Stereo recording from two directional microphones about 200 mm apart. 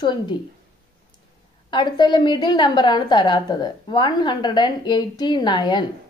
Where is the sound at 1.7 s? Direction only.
20° left (ahead or behind).